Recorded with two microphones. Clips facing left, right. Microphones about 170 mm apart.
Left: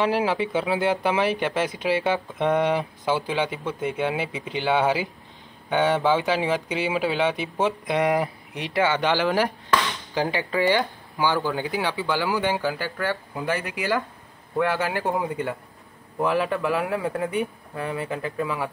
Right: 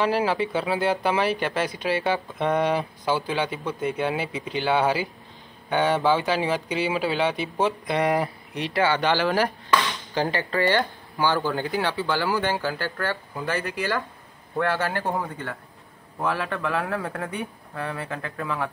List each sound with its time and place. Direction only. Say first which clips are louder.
0.0 s speech: even; 15° left (ahead or behind)